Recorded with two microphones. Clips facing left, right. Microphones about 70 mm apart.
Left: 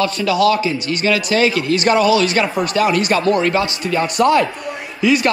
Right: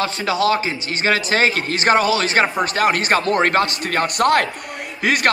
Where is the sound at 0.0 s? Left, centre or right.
Right.